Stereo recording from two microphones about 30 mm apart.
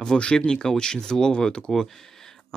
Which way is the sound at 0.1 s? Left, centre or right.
Centre.